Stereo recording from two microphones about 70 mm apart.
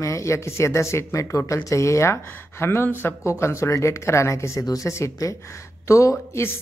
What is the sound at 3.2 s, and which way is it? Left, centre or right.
Speech, left.